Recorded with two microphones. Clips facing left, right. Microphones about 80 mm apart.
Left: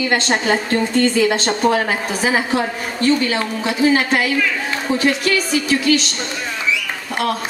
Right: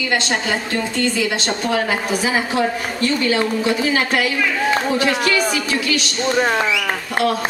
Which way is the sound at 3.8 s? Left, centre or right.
Left.